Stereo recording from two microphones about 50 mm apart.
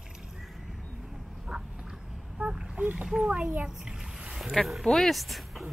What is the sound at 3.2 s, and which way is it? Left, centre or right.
Splash, right.